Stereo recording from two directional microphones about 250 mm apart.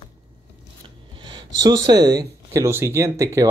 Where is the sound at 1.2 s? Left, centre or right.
Centre.